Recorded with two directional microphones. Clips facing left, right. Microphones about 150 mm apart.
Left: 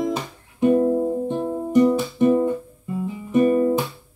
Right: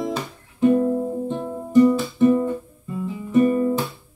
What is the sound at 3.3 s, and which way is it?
Guitar, 20° left (ahead or behind).